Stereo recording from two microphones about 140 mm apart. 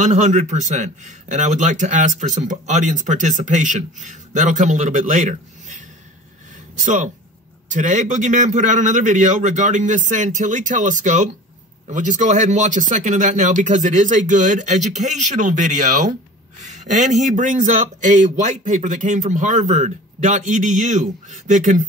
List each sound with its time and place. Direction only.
0.0 s speech: 60° right (ahead or behind)